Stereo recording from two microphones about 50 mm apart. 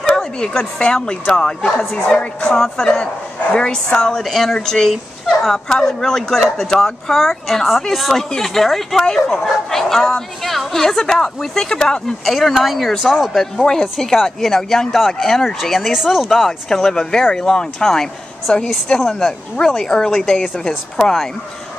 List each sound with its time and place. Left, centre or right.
0.0 s a sound: centre
0.9 s speech: centre
3.5 s speech: centre
4.1 s speech: centre
4.6 s speech: centre
4.8 s dog: centre
5.7 s speech: centre
12.3 s speech: centre
13.3 s a woman's voice: centre
18.9 s speech: centre